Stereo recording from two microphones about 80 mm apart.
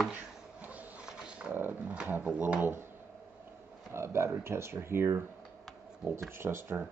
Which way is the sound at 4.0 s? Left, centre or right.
Right.